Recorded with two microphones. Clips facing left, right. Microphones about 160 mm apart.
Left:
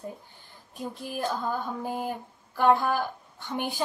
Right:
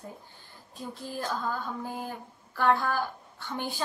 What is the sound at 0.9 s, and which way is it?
Female singing, 15° left (ahead or behind).